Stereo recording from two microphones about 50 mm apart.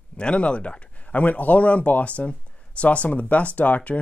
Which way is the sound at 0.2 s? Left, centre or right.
Left.